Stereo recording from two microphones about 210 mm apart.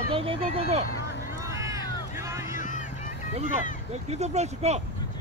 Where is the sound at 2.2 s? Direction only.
15° right (ahead or behind).